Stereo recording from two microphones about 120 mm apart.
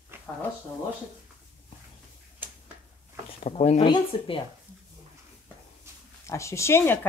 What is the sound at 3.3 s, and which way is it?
Speech, 65° left (ahead or behind).